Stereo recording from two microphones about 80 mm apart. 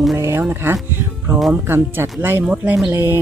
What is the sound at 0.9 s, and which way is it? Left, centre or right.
Music, right.